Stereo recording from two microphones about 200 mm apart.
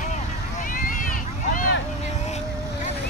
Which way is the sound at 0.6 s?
40° left (ahead or behind).